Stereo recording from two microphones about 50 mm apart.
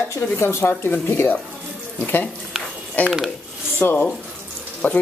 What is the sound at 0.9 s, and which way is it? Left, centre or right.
Speech, left.